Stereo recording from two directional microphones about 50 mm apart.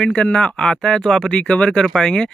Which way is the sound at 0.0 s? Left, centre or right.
Centre.